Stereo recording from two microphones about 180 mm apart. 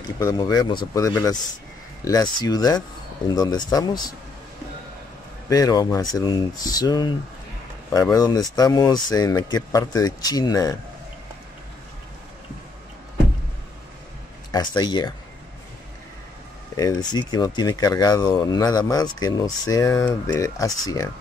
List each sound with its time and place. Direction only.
0.2 s speech: 20° left (ahead or behind)
5.5 s speech: 20° left (ahead or behind)
14.5 s speech: 25° left (ahead or behind)
16.7 s speech: 20° left (ahead or behind)